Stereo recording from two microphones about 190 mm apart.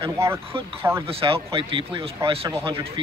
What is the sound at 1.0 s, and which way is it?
Speech, 30° right (ahead or behind).